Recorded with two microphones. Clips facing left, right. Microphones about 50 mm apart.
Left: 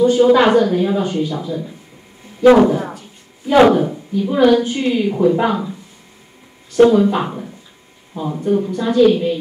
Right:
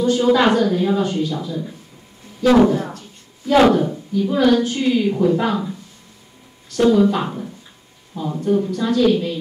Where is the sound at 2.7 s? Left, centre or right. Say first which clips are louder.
Left 1 dB; centre.